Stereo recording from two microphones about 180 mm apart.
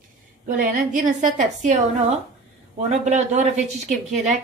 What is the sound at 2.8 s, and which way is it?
Speech, 40° right (ahead or behind).